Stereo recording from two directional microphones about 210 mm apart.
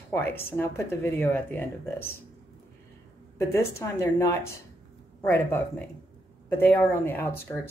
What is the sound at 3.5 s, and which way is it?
A woman's voice, 15° left (ahead or behind).